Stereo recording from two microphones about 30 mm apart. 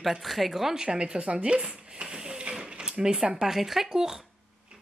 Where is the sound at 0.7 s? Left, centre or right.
Right.